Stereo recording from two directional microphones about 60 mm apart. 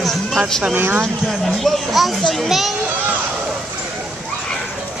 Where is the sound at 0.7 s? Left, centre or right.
Right.